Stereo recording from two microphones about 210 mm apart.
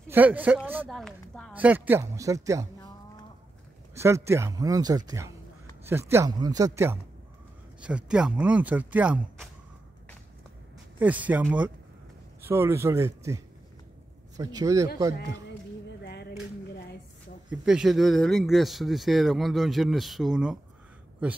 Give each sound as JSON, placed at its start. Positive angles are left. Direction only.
{"t": 0.1, "sound": "speech", "side_deg": -10}
{"t": 3.9, "sound": "speech", "side_deg": -15}
{"t": 11.0, "sound": "speech", "side_deg": -5}
{"t": 16.0, "sound": "a sound", "side_deg": 50}
{"t": 17.5, "sound": "speech", "side_deg": -5}